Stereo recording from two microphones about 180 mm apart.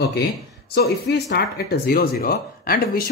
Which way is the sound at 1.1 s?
70° left (ahead or behind).